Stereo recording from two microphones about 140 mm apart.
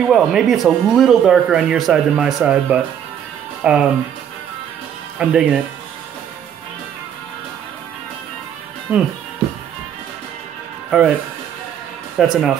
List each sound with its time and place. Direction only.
0.1 s speech: 5° right (ahead or behind)
5.2 s speech: 5° right (ahead or behind)
8.9 s speech: 10° right (ahead or behind)
10.9 s speech: centre (ahead or behind)
12.2 s speech: 5° right (ahead or behind)